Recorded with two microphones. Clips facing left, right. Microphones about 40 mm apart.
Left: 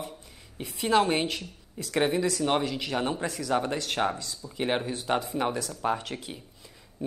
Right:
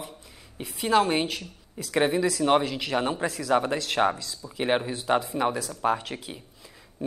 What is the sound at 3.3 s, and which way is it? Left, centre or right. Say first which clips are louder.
Speech: right 4 dB; right.